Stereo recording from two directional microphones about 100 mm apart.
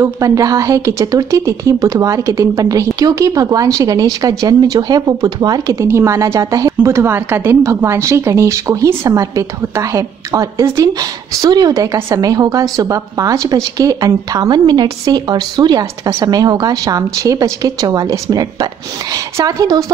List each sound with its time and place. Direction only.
0.0 s a woman's voice: 35° right (ahead or behind)
5.8 s a woman's voice: 30° right (ahead or behind)